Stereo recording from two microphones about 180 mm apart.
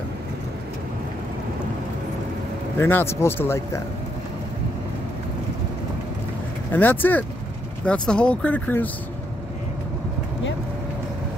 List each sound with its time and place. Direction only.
2.8 s speech: 15° left (ahead or behind)
6.7 s speech: 10° left (ahead or behind)